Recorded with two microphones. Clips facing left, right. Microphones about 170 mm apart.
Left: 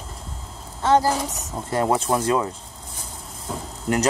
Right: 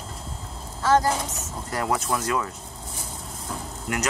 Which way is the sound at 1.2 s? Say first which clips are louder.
Left 4 dB; 25° left (ahead or behind).